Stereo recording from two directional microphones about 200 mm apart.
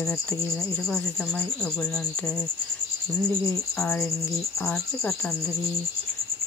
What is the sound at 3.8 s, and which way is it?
Speech, 5° left (ahead or behind).